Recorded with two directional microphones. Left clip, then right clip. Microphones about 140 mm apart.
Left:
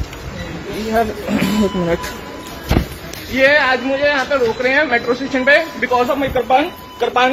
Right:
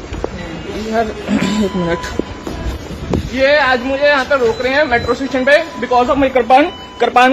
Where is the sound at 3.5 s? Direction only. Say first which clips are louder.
Right 4 dB; 20° right (ahead or behind).